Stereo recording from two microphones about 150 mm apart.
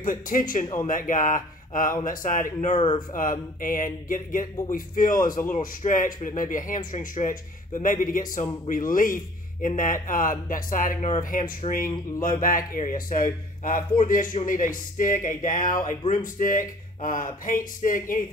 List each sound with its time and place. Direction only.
0.0 s a man's voice: 65° left (ahead or behind)